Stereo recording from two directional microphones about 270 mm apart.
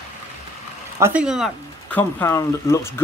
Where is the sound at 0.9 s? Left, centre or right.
Centre.